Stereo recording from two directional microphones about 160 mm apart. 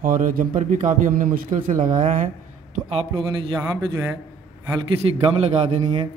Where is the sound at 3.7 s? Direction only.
20° right (ahead or behind).